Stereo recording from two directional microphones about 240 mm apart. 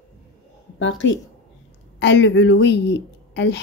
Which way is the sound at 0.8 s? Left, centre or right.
Left.